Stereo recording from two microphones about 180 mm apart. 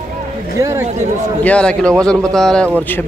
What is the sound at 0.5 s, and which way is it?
Speech, 20° right (ahead or behind).